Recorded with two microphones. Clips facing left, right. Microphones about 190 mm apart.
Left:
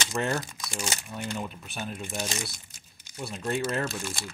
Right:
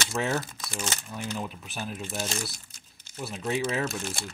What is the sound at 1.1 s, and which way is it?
Speech, 5° right (ahead or behind).